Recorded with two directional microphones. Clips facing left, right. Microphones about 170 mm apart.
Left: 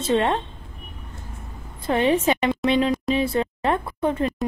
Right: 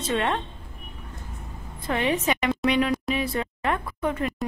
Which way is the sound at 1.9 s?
30° left (ahead or behind).